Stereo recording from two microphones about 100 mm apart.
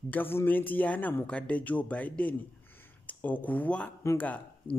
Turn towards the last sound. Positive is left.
turn(degrees=15)  # may be behind; listen again after turning